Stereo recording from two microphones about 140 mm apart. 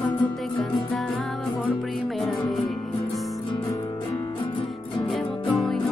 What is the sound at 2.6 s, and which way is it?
Music, centre (ahead or behind).